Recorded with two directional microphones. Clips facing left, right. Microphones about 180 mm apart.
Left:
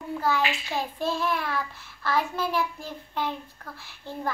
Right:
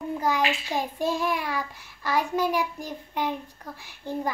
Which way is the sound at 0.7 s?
15° right (ahead or behind).